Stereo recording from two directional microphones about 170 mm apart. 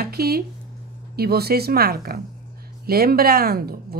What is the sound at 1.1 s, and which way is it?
Speech, 65° right (ahead or behind).